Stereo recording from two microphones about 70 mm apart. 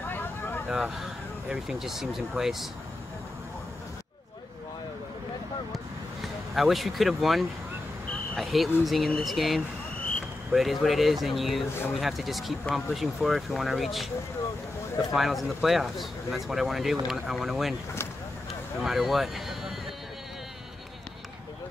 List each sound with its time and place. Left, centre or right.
0.1 s vehicle: left
0.7 s speech: centre
6.5 s speech: centre
18.8 s speech: centre